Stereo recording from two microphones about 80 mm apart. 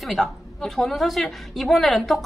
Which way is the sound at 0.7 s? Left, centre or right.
Centre.